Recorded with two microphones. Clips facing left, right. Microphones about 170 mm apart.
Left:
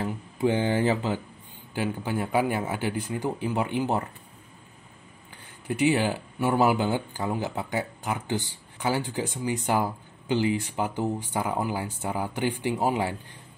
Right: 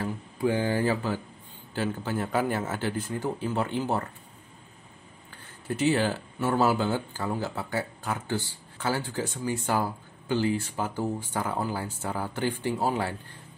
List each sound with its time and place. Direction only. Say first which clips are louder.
0.0 s speech: left 2 dB; 20° left (ahead or behind)
5.3 s speech: left 1 dB; 15° left (ahead or behind)